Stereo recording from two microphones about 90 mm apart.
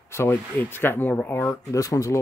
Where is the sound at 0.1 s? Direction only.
25° left (ahead or behind).